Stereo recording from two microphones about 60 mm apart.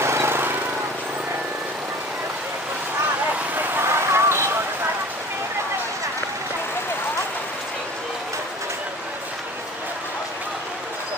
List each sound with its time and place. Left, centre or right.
0.0 s vehicle: right
3.5 s vehicle: right